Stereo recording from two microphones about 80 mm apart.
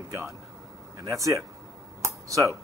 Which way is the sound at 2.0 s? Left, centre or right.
Right.